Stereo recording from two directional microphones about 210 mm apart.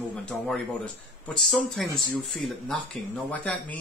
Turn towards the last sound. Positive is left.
turn(degrees=5)  # may be behind; listen again after turning